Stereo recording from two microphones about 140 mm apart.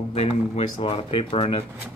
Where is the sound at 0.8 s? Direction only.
40° left (ahead or behind).